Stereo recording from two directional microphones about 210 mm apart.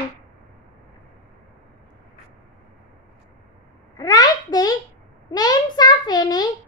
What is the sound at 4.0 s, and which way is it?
A child's voice, 20° left (ahead or behind).